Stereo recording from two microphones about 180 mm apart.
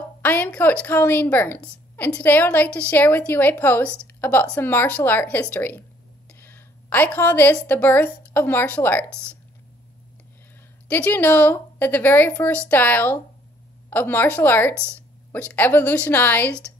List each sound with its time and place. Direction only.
0.2 s a woman's voice: 10° left (ahead or behind)
10.9 s a woman's voice: 10° left (ahead or behind)